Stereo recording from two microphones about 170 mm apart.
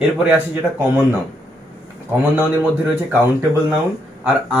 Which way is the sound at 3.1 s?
10° right (ahead or behind).